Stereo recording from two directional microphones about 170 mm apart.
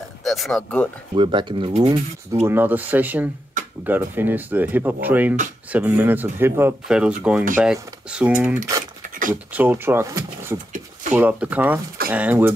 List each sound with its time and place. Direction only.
0.2 s speech: centre (ahead or behind)
1.1 s speech: 30° right (ahead or behind)
2.4 s speech: 10° right (ahead or behind)